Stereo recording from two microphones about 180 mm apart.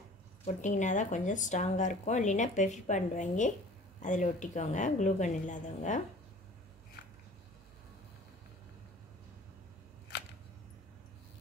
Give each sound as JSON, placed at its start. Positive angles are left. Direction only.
{"t": 0.6, "sound": "speech", "side_deg": 45}